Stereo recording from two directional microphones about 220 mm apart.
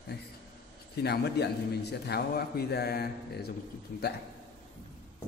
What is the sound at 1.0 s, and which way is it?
A man's voice, 50° left (ahead or behind).